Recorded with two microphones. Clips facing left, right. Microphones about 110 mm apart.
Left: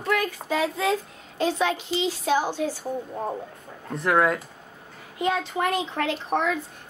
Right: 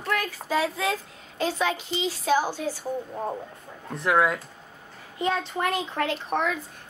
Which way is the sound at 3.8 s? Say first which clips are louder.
Left 1 dB; centre (ahead or behind).